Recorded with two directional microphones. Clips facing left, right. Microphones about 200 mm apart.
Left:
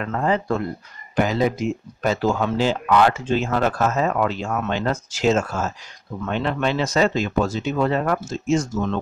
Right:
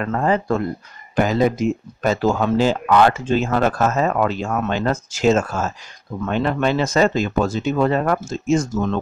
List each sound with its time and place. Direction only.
0.0 s speech: 45° right (ahead or behind)